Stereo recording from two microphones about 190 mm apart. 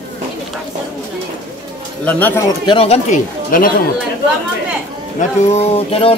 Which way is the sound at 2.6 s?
25° left (ahead or behind).